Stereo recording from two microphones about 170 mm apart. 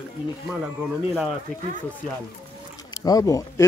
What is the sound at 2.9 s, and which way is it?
Speech, 20° left (ahead or behind).